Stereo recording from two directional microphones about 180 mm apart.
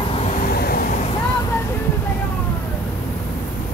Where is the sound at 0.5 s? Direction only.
60° left (ahead or behind).